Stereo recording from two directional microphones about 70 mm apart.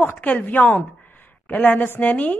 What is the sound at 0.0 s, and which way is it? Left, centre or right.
A woman's voice, left.